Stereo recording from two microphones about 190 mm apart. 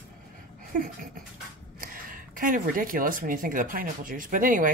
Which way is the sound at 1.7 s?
45° right (ahead or behind).